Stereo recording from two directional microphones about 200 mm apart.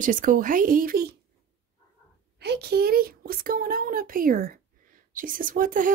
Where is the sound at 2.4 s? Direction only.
55° right (ahead or behind).